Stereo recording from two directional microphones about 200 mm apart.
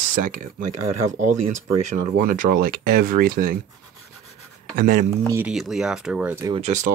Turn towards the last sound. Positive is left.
turn(degrees=-35)  # may be behind; listen again after turning